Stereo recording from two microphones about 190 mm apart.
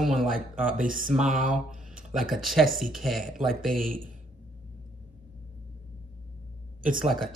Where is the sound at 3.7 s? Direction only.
45° right (ahead or behind).